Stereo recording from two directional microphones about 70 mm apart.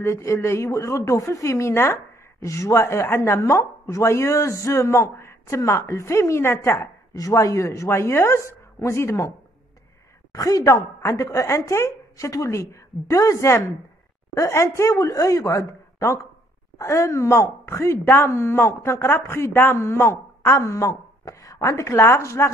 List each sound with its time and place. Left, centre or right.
0.0 s a woman's voice: left
7.2 s a woman's voice: left
10.3 s a woman's voice: left
11.4 s a woman's voice: left